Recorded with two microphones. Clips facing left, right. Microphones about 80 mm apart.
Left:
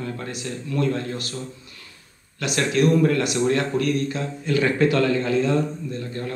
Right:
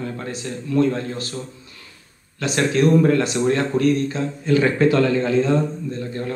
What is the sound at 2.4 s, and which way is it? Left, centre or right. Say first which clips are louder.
A man's voice: right 2 dB; right.